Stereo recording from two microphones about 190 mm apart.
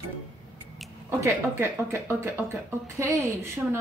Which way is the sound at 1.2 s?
15° right (ahead or behind).